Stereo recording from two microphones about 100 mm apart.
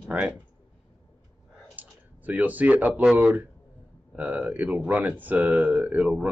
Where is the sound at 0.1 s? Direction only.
15° right (ahead or behind).